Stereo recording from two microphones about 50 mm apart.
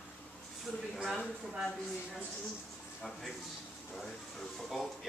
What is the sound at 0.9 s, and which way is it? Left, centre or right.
Speech, centre.